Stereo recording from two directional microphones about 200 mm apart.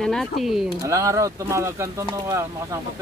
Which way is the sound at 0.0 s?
Centre (ahead or behind).